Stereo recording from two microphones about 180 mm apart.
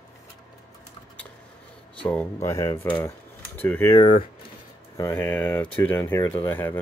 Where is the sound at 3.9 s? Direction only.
30° left (ahead or behind).